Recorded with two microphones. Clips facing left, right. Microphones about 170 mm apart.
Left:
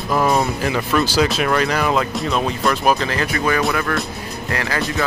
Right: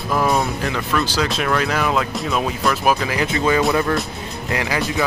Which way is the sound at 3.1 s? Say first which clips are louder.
Right 1 dB; 20° right (ahead or behind).